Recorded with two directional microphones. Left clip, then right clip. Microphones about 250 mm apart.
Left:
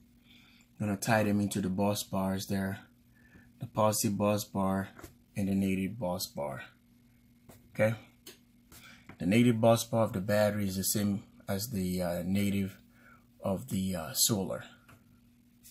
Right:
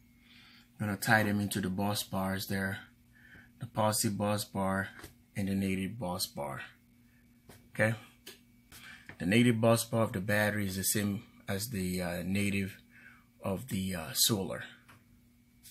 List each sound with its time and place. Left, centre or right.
0.7 s speech: centre
7.7 s speech: centre
9.0 s speech: centre